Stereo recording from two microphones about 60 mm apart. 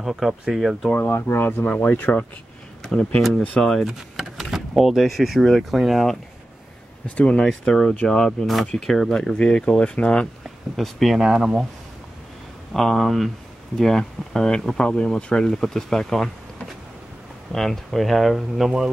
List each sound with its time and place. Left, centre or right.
0.0 s speech: centre
0.9 s speech: left
1.6 s speech: left
2.8 s speech: centre
3.8 s a sound: centre
4.7 s speech: centre
7.2 s speech: centre
10.8 s speech: centre
12.7 s speech: centre